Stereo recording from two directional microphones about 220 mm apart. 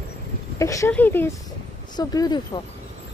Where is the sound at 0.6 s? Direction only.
15° left (ahead or behind).